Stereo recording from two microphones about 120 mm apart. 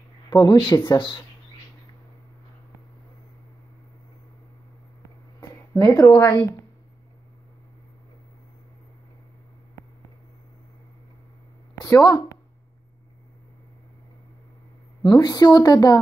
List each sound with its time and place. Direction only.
0.3 s a woman's voice: 35° left (ahead or behind)
5.4 s a sound: 35° left (ahead or behind)
11.8 s speech: 30° left (ahead or behind)
15.0 s a woman's voice: 35° left (ahead or behind)